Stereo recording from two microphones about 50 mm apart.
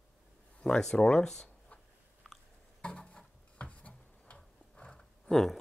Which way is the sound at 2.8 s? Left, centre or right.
Left.